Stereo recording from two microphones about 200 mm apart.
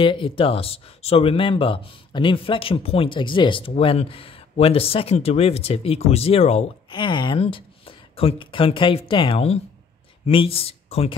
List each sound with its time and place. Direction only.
0.0 s speech: 25° left (ahead or behind)